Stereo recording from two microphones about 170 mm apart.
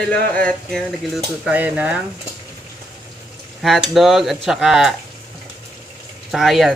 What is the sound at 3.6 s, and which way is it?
Speech, centre (ahead or behind).